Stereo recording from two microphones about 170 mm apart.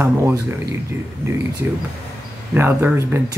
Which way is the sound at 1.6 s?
15° right (ahead or behind).